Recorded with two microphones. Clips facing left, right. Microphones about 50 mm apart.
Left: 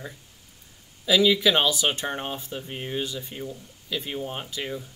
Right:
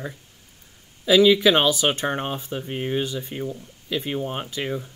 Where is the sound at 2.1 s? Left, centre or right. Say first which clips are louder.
Right 4 dB; right.